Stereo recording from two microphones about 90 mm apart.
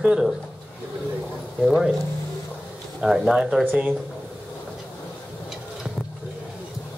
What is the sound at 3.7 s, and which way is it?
Speech, 20° right (ahead or behind).